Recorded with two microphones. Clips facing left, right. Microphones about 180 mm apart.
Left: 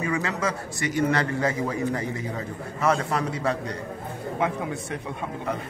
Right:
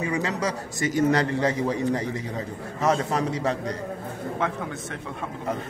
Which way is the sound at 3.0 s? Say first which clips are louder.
Right 1 dB; 20° right (ahead or behind).